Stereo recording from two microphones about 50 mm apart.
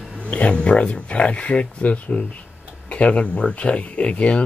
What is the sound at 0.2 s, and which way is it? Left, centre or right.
Speech, left.